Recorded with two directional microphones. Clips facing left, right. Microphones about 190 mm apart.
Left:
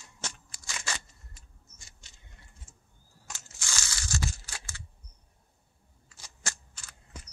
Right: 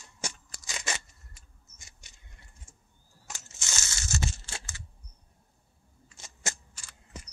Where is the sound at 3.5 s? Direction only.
25° right (ahead or behind).